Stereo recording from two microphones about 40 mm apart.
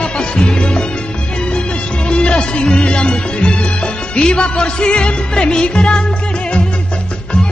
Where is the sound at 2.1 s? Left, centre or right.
Left.